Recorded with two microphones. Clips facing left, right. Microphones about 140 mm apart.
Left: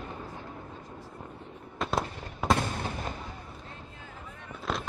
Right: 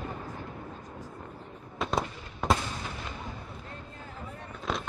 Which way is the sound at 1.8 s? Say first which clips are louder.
Even; centre (ahead or behind).